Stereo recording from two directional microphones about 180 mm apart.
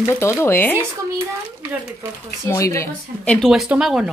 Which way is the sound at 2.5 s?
20° left (ahead or behind).